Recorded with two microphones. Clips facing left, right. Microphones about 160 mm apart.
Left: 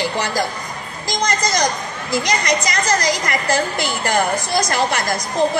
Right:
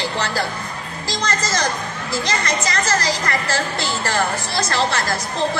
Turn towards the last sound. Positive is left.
turn(degrees=15)  # may be behind; listen again after turning